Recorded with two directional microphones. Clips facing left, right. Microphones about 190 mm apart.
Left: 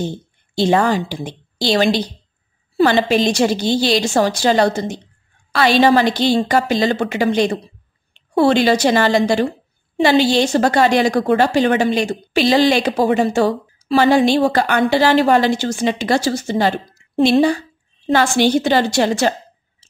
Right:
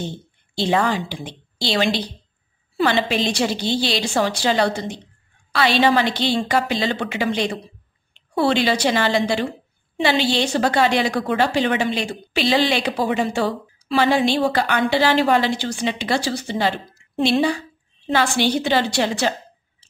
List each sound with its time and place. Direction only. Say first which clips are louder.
0.6 s a woman's voice: left 5 dB; 45° left (ahead or behind)